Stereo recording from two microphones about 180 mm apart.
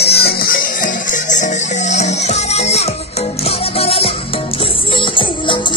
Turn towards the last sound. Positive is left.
turn(degrees=25)  # may be behind; listen again after turning